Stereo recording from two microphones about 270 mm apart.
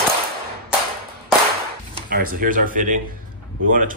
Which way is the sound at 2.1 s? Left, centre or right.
Right.